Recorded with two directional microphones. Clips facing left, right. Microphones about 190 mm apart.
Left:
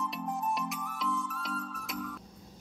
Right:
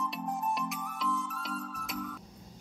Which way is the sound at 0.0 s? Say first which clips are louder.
Even; centre (ahead or behind).